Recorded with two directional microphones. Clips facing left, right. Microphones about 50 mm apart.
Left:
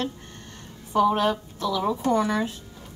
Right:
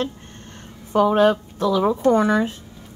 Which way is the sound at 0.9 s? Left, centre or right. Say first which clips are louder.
Right 5 dB; right.